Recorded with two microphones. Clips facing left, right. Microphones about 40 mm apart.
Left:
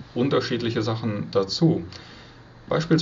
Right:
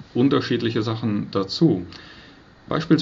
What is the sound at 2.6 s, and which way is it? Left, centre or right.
Speech, centre.